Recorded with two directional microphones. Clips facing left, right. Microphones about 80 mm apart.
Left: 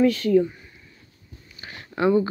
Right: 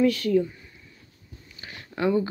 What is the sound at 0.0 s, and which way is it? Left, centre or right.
Speech, left.